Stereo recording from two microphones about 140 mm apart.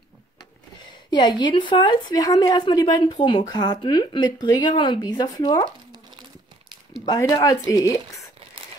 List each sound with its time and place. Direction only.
1.1 s a woman's voice: 30° left (ahead or behind)
7.1 s speech: 25° left (ahead or behind)